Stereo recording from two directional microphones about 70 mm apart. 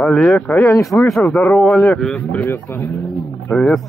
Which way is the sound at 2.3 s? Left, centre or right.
Left.